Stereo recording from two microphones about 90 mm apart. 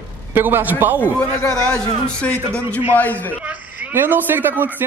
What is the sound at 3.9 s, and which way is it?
Speech, 20° right (ahead or behind).